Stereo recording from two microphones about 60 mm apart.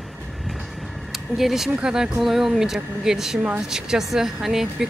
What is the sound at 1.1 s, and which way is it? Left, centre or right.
A woman's voice, centre.